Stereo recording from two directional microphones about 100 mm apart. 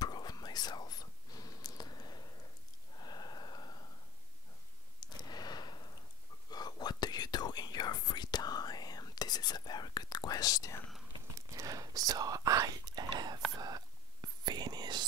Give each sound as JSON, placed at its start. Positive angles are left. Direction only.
{"t": 0.0, "sound": "whispering", "side_deg": 45}
{"t": 3.0, "sound": "snort", "side_deg": 45}
{"t": 5.0, "sound": "a sound", "side_deg": 45}
{"t": 6.5, "sound": "whispering", "side_deg": 45}
{"t": 11.3, "sound": "whispering", "side_deg": -35}